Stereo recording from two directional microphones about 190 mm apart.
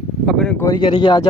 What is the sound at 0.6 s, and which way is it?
Speech, 20° left (ahead or behind).